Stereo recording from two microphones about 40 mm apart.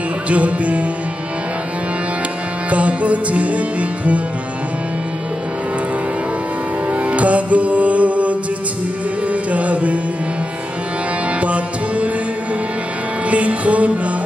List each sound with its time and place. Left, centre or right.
0.3 s music: right
2.7 s music: right
6.9 s music: right
11.4 s music: right
13.3 s music: right